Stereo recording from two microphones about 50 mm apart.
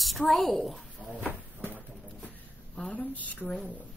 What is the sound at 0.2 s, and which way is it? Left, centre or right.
Speech, centre.